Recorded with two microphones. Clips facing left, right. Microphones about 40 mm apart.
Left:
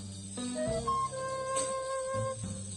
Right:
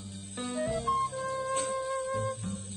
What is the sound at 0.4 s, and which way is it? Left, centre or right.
Music, right.